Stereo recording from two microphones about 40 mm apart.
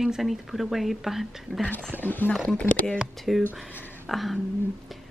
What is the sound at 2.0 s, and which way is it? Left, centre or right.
Speech, left.